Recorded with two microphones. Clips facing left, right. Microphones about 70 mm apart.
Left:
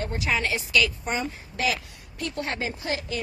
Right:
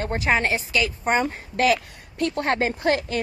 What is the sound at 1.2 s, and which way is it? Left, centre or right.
A woman's voice, right.